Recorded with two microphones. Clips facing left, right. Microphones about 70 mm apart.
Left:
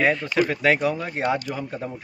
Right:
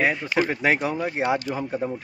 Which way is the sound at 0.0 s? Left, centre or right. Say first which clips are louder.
Left 1 dB; centre.